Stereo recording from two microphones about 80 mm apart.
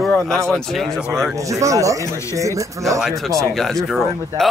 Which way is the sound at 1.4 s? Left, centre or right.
Right.